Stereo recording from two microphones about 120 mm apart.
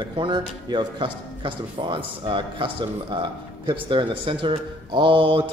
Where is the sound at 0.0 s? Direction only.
40° right (ahead or behind).